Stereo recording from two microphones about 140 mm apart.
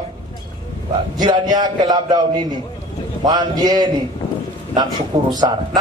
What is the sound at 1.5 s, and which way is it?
A man's voice, 30° right (ahead or behind).